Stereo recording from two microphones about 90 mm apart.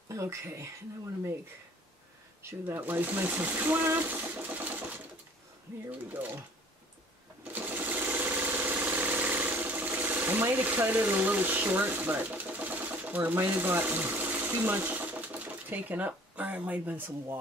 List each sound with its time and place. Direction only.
0.1 s speech: 30° right (ahead or behind)
2.7 s speech: 20° right (ahead or behind)
6.2 s speech: 20° right (ahead or behind)
7.5 s sewing machine: 20° right (ahead or behind)